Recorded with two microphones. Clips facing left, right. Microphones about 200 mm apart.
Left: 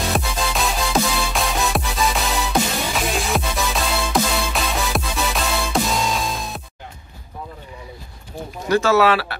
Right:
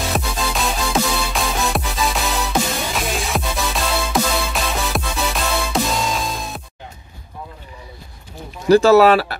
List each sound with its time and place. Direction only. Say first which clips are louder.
0.1 s music: even; centre (ahead or behind)
8.6 s speech: right 6 dB; 35° right (ahead or behind)